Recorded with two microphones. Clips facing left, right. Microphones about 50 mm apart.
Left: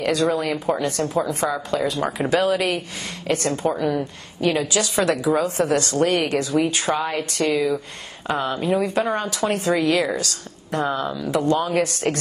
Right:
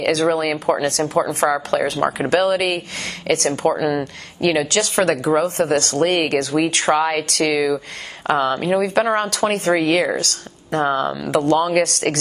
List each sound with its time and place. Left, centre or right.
0.0 s speech: right
1.5 s speech: right
2.0 s a woman's voice: right
3.3 s a woman's voice: right
9.5 s a woman's voice: right